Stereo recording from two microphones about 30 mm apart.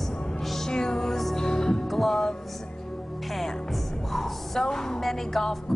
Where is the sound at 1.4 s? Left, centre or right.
Centre.